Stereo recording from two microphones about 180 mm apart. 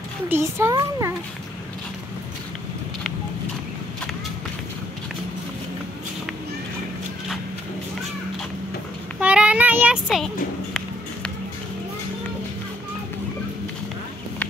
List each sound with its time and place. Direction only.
0.3 s a child's voice: 15° right (ahead or behind)
9.2 s child singing: 5° right (ahead or behind)
10.0 s music: centre (ahead or behind)